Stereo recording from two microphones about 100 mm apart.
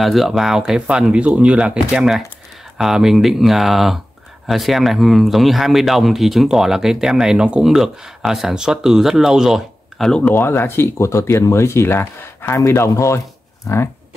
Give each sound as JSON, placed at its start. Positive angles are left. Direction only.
{"t": 0.0, "sound": "speech", "side_deg": 0}
{"t": 10.2, "sound": "speech", "side_deg": 20}